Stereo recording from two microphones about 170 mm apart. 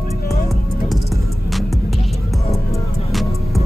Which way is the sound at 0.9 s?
Centre (ahead or behind).